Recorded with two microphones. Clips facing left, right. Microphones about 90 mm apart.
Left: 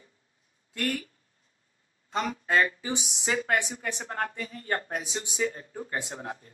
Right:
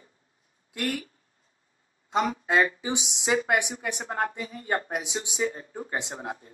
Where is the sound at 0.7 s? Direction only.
10° right (ahead or behind).